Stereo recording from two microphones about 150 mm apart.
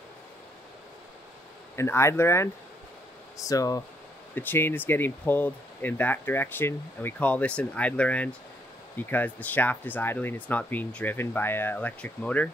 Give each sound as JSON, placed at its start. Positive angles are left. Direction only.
{"t": 1.8, "sound": "speech", "side_deg": 20}